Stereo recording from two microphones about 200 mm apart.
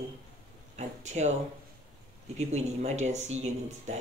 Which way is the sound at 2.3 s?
35° right (ahead or behind).